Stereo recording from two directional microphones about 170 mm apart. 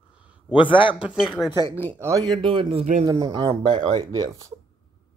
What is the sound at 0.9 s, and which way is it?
Speech, 5° right (ahead or behind).